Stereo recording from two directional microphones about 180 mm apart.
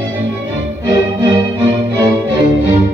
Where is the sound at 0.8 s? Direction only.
25° right (ahead or behind).